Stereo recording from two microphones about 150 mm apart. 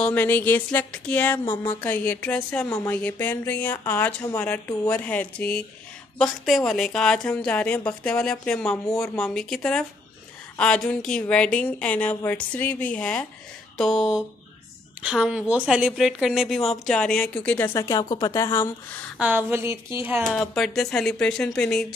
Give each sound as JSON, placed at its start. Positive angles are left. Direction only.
{"t": 0.0, "sound": "speech", "side_deg": 10}
{"t": 1.4, "sound": "a sound", "side_deg": 35}
{"t": 1.9, "sound": "speech", "side_deg": 10}
{"t": 2.7, "sound": "speech", "side_deg": 20}
{"t": 3.0, "sound": "a woman's voice", "side_deg": 10}
{"t": 17.8, "sound": "speech", "side_deg": 25}
{"t": 19.1, "sound": "speech", "side_deg": -10}
{"t": 20.3, "sound": "a woman's voice", "side_deg": 0}